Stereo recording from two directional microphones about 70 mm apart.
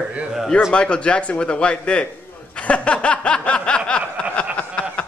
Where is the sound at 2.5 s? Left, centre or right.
Centre.